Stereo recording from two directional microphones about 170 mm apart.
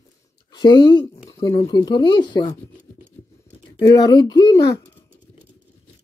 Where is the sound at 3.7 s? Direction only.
25° left (ahead or behind).